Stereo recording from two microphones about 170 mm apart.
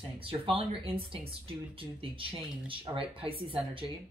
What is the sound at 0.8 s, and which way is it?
Speech, 35° right (ahead or behind).